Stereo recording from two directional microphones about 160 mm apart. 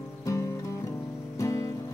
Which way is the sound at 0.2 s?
20° left (ahead or behind).